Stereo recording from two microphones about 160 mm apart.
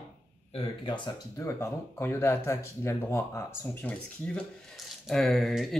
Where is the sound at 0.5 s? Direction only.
30° left (ahead or behind).